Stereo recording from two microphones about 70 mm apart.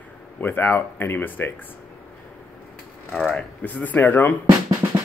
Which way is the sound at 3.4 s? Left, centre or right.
Centre.